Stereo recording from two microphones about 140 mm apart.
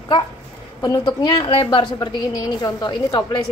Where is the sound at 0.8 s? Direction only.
25° left (ahead or behind).